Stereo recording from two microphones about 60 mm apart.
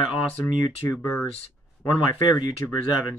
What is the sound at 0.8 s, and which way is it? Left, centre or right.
Speech, left.